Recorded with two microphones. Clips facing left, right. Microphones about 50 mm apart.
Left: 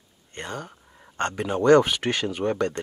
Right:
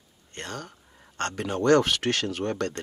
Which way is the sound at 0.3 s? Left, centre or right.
Centre.